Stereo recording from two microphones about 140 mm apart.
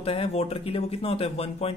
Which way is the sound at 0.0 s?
45° left (ahead or behind).